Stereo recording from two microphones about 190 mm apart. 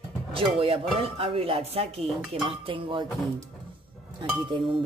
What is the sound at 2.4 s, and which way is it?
Speech, 30° right (ahead or behind).